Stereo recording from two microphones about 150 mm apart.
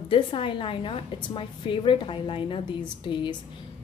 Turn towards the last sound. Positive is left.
turn(degrees=30)  # may be behind; listen again after turning